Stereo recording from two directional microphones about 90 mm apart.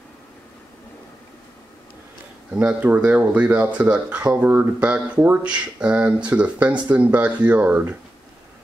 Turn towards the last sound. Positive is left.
turn(degrees=-20)  # may be behind; listen again after turning